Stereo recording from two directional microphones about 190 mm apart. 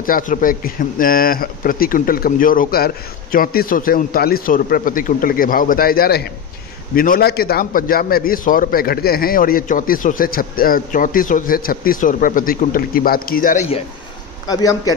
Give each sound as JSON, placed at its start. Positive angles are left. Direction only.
{"t": 0.0, "sound": "a man's voice", "side_deg": 45}
{"t": 14.5, "sound": "a man's voice", "side_deg": 20}